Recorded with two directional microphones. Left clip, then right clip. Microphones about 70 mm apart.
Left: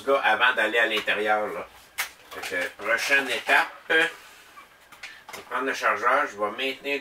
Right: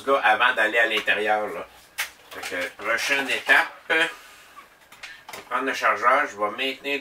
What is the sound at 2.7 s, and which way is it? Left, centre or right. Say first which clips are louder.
Speech: left 1 dB; centre.